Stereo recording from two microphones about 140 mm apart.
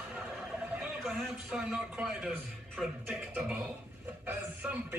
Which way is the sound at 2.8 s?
5° right (ahead or behind).